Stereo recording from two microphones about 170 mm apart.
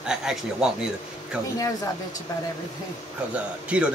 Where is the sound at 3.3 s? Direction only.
5° right (ahead or behind).